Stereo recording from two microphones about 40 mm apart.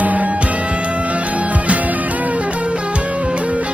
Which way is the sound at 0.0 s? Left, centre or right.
Right.